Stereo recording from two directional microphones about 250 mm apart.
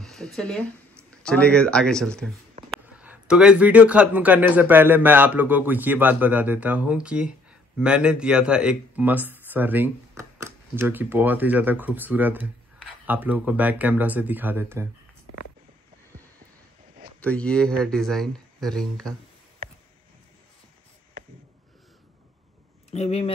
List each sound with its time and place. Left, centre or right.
0.0 s speech: centre
17.2 s speech: centre
22.9 s speech: left